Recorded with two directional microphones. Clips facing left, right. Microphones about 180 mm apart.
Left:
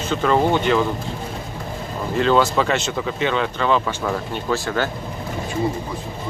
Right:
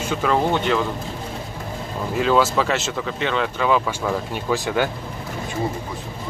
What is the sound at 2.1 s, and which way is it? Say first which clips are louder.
Speech: left 1 dB; 5° right (ahead or behind).